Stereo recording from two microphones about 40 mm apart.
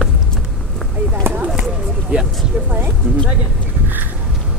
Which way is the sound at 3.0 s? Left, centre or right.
Right.